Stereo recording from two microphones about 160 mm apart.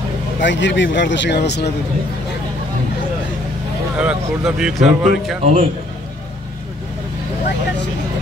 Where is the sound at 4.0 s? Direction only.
5° right (ahead or behind).